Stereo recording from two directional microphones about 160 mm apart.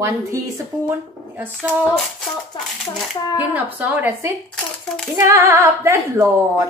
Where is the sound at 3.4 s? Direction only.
10° right (ahead or behind).